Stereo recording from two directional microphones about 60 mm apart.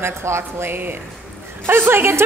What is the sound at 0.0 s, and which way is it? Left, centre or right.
A woman's voice, right.